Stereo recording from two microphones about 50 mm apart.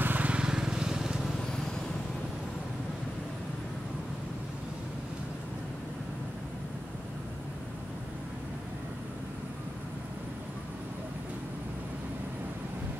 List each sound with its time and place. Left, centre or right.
0.0 s vehicle: right
0.3 s vehicle: centre